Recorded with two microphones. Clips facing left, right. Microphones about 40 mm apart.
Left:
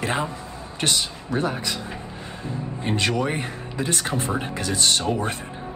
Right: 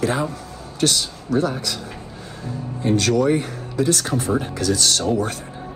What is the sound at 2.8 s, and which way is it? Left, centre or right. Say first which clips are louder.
Speech: right 6 dB; left.